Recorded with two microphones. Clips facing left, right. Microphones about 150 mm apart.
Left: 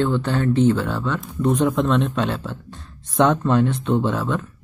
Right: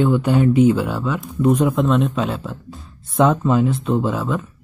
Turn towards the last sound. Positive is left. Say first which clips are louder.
# right 1 dB
turn(degrees=-5)  # may be behind; listen again after turning